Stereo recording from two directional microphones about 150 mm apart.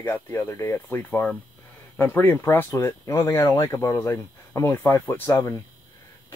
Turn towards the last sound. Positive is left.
turn(degrees=15)  # may be behind; listen again after turning